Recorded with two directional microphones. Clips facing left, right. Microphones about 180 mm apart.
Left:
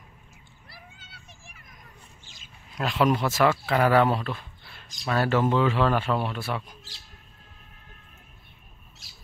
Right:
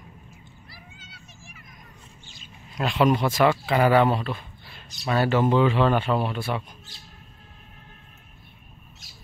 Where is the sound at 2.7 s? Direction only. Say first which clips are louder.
Right 2 dB; centre (ahead or behind).